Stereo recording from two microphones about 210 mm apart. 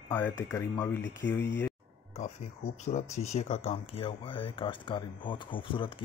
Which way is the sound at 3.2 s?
30° left (ahead or behind).